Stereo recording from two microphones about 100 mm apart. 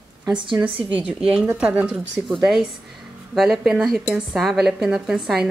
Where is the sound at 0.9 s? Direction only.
10° right (ahead or behind).